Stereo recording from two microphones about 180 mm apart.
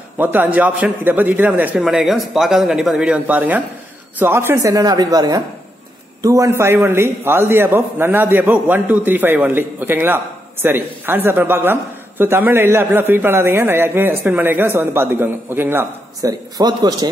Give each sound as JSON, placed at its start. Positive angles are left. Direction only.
{"t": 0.2, "sound": "a man's voice", "side_deg": -10}